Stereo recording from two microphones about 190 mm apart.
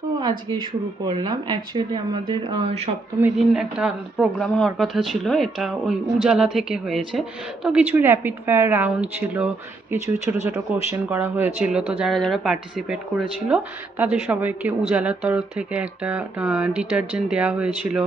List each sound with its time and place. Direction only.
1.0 s speech: 25° right (ahead or behind)
3.2 s a woman's voice: 5° right (ahead or behind)